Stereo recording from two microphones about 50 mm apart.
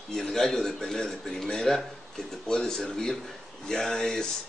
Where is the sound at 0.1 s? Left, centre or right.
Centre.